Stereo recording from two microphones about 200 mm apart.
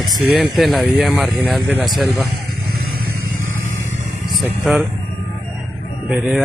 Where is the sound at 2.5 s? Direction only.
50° right (ahead or behind).